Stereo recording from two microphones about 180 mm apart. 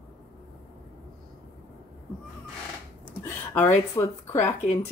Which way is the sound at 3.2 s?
10° left (ahead or behind).